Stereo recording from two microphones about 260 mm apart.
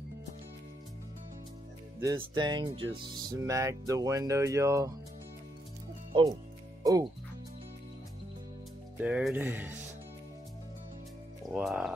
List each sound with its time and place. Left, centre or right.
2.0 s speech: centre
6.8 s speech: centre
9.0 s speech: centre
11.5 s speech: centre